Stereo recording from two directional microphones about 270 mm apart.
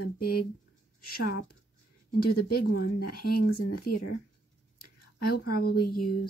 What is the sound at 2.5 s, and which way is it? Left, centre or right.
Speech, left.